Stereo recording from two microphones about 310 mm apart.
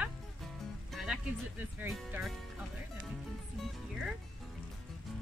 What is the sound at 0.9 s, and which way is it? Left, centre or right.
Music, centre.